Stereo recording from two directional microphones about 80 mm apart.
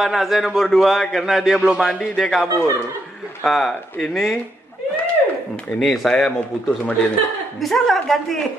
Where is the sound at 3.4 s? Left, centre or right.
Centre.